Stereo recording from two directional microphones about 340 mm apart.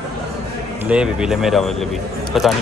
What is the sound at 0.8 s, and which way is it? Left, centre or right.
Speech, centre.